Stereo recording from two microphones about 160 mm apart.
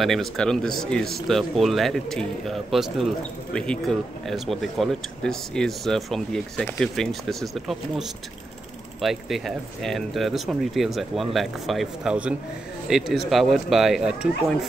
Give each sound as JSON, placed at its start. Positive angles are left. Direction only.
{"t": 0.0, "sound": "speech", "side_deg": 0}
{"t": 9.0, "sound": "speech", "side_deg": 0}